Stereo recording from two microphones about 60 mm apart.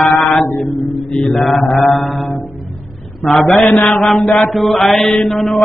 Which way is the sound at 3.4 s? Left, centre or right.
Left.